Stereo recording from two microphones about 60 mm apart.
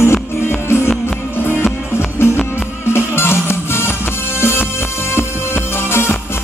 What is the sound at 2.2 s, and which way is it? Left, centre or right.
Music, left.